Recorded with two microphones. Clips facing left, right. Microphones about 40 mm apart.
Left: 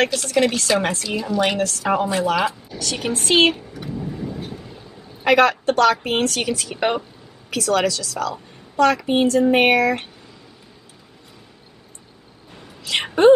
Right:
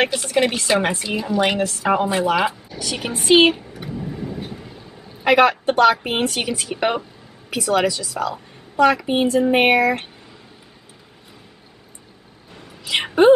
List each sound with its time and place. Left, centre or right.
0.0 s a woman's voice: centre
3.7 s vehicle: centre
5.2 s a woman's voice: centre
12.8 s a woman's voice: centre